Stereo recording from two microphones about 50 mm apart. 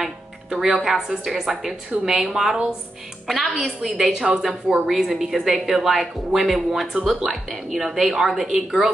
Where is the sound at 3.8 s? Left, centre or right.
Centre.